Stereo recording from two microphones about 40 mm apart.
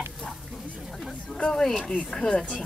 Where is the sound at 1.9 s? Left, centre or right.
Left.